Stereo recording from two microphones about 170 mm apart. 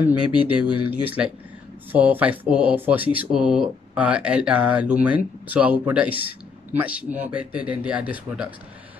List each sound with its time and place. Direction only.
0.3 s speech: 10° right (ahead or behind)